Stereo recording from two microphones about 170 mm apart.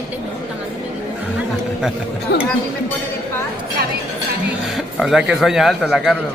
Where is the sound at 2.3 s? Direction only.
65° left (ahead or behind).